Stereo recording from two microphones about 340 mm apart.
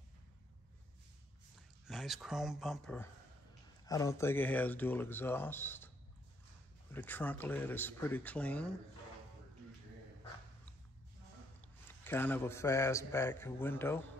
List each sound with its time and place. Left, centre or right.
1.9 s speech: centre
6.9 s speech: centre
12.0 s speech: centre